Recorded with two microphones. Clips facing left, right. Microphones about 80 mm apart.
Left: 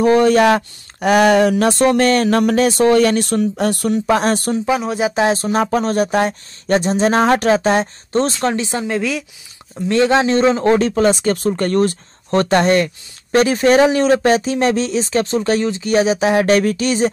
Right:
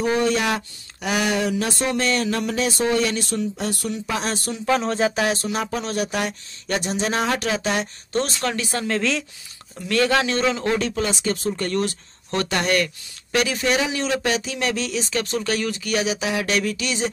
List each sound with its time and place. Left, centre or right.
0.0 s a sound: left
4.6 s speech: centre
5.1 s speech: left
5.5 s speech: left; by 9.2 s centre
9.8 s speech: left